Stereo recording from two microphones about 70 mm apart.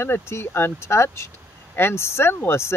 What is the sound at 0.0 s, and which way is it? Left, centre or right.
Speech, left.